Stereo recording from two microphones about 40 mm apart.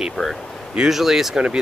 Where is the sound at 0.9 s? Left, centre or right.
Centre.